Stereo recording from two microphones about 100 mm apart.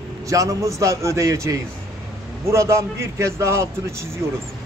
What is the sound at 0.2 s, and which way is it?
A man's voice, 35° right (ahead or behind).